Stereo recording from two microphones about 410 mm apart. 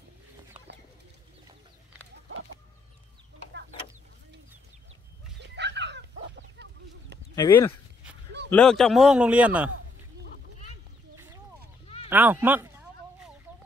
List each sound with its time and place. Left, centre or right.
5.4 s dog: right
6.6 s chicken: right
7.3 s speech: centre
12.1 s a sound: centre